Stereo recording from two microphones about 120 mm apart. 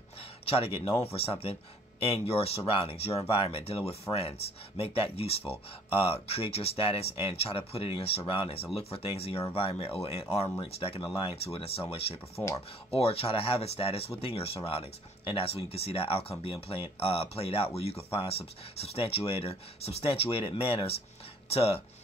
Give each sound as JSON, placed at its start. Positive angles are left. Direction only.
{"t": 0.2, "sound": "speech", "side_deg": 55}